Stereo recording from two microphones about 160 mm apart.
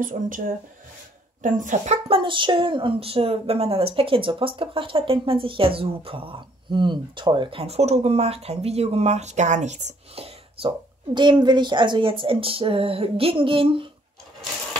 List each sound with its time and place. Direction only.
0.2 s speech: 50° right (ahead or behind)
1.4 s speech: 55° right (ahead or behind)
2.0 s a woman's voice: 35° right (ahead or behind)
11.1 s a woman's voice: 30° right (ahead or behind)